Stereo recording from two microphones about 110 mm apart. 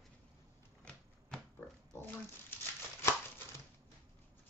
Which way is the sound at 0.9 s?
5° left (ahead or behind).